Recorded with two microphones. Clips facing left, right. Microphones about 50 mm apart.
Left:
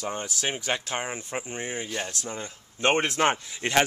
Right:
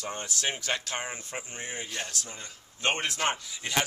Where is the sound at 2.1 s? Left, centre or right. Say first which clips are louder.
Left 5 dB; left.